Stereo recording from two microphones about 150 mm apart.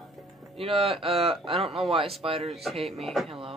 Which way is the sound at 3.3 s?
40° right (ahead or behind).